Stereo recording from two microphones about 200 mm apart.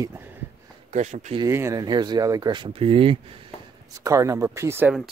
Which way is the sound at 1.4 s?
15° right (ahead or behind).